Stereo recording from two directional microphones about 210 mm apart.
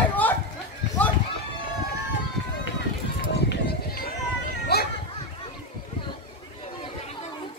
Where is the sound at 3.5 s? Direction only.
45° left (ahead or behind).